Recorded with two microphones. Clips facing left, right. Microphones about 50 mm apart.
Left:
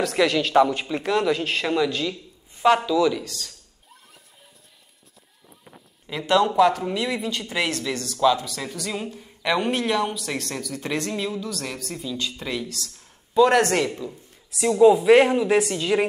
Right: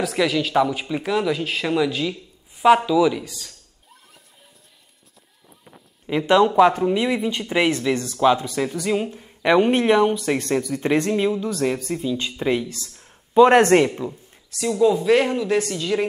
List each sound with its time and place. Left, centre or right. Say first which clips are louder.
0.0 s speech: even; centre
6.0 s speech: right 4 dB; right
14.9 s speech: left 3 dB; centre